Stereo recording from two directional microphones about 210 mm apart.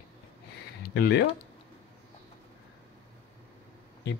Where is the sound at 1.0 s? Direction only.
55° left (ahead or behind).